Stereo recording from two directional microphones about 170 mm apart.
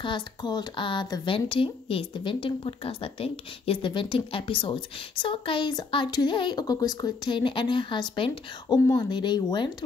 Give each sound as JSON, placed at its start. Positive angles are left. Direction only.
{"t": 0.0, "sound": "speech", "side_deg": 25}